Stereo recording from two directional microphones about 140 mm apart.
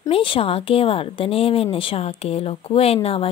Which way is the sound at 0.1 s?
40° left (ahead or behind).